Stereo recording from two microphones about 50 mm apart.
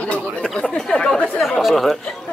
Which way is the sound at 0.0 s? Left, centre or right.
Left.